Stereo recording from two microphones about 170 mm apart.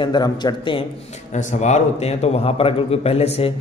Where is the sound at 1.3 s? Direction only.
40° left (ahead or behind).